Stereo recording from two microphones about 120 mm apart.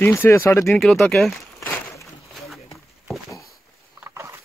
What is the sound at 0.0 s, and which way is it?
Speech, 20° left (ahead or behind).